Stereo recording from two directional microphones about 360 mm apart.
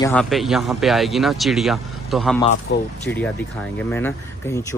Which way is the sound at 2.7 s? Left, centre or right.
Left.